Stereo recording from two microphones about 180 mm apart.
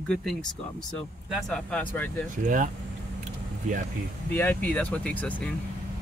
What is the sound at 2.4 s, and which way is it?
Speech, 50° right (ahead or behind).